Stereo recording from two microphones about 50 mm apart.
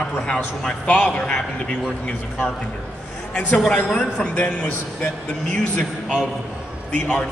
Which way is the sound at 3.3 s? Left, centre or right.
Centre.